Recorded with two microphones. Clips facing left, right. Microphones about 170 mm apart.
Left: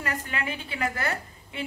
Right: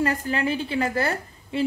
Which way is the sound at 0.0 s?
35° right (ahead or behind).